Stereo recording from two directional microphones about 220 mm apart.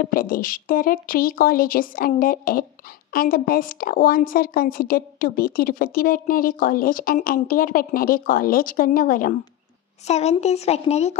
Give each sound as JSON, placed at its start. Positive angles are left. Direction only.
{"t": 0.0, "sound": "a woman's voice", "side_deg": 40}